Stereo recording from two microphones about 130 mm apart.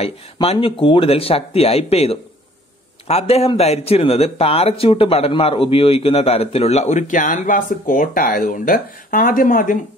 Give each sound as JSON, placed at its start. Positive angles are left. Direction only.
{"t": 0.0, "sound": "speech", "side_deg": 50}